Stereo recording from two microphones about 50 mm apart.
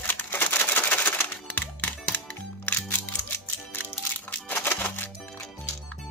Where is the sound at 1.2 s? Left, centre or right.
Left.